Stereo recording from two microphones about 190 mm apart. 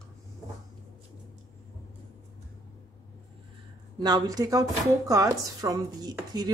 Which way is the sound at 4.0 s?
20° right (ahead or behind).